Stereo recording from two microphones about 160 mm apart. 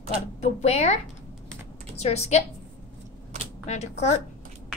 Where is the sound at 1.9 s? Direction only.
40° left (ahead or behind).